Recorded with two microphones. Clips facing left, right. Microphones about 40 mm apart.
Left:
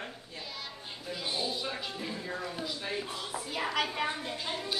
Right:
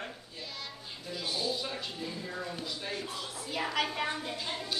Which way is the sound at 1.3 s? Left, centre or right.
Centre.